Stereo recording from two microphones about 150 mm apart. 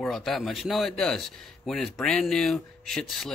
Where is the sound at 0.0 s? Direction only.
Centre (ahead or behind).